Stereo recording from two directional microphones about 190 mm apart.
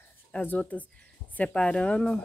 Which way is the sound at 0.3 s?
5° left (ahead or behind).